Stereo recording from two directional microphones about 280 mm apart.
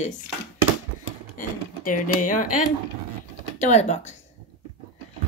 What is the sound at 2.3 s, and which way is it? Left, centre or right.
Speech, left.